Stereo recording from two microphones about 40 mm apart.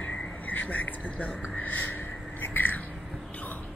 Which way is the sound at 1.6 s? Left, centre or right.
Left.